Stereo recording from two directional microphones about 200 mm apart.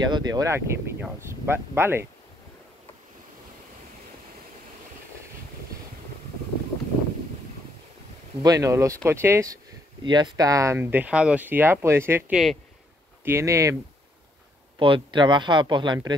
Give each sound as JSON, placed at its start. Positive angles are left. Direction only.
{"t": 0.0, "sound": "speech", "side_deg": -20}
{"t": 8.4, "sound": "speech", "side_deg": -20}
{"t": 13.2, "sound": "speech", "side_deg": -15}
{"t": 14.8, "sound": "speech", "side_deg": -25}